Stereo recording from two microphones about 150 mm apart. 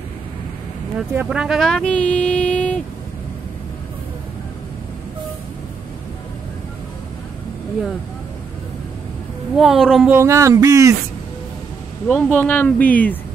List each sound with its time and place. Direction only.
0.9 s speech: 5° right (ahead or behind)
9.6 s speech: centre (ahead or behind)
10.0 s speech: 20° right (ahead or behind)
12.1 s speech: 10° left (ahead or behind)